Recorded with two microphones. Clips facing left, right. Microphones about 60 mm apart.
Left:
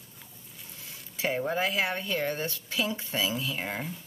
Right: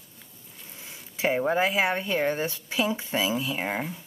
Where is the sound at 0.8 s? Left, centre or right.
Right.